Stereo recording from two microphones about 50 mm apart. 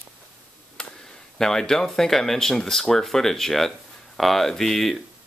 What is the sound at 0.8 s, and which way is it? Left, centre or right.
Tick, centre.